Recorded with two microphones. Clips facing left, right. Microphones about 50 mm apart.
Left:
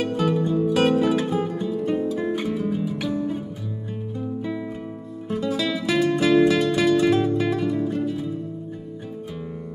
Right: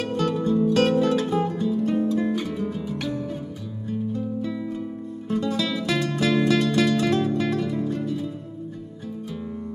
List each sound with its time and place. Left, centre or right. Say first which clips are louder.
0.0 s music: left 2 dB; centre
2.5 s music: left 3 dB; centre
5.3 s music: left 1 dB; centre